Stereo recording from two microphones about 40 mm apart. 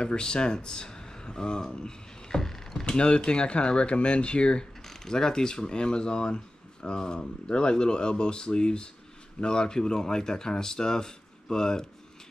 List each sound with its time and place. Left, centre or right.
0.0 s speech: left
2.8 s speech: left